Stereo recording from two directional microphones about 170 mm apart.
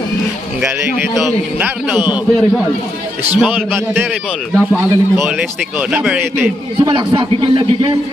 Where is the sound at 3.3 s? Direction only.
5° right (ahead or behind).